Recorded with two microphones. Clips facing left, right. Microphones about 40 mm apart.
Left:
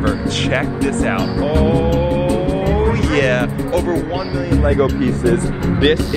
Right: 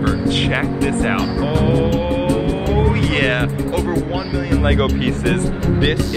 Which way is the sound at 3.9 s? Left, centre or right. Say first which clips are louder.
Left 1 dB; centre.